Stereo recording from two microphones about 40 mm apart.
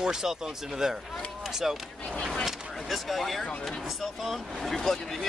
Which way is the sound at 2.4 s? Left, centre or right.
Centre.